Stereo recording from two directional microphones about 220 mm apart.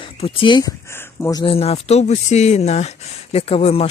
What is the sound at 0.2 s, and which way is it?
Speech, 20° left (ahead or behind).